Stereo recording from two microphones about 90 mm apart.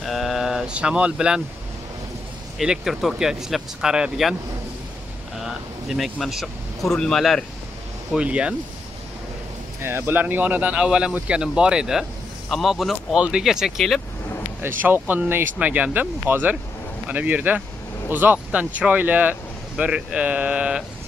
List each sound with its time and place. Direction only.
0.0 s sheep: centre (ahead or behind)
2.6 s speech: 5° right (ahead or behind)
5.4 s speech: centre (ahead or behind)
8.2 s speech: 10° right (ahead or behind)
9.8 s a man's voice: 25° right (ahead or behind); by 14.0 s centre (ahead or behind)
14.6 s speech: 20° right (ahead or behind)